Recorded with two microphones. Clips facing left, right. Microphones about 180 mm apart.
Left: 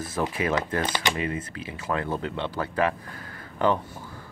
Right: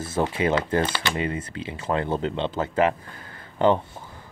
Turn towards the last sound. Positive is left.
turn(degrees=-25)  # may be behind; listen again after turning